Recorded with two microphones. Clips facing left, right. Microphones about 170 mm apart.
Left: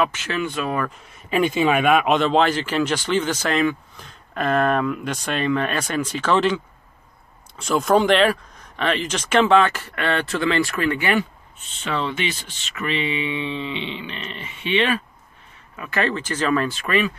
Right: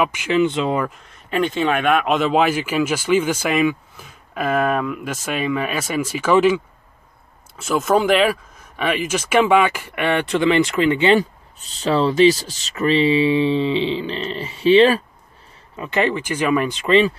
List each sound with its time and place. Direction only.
0.0 s speech: 15° right (ahead or behind)
1.1 s speech: 10° left (ahead or behind); by 11.1 s 20° right (ahead or behind)
11.1 s speech: 35° right (ahead or behind)
15.7 s speech: 25° right (ahead or behind)